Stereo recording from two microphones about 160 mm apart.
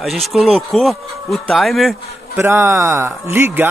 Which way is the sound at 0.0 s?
Centre (ahead or behind).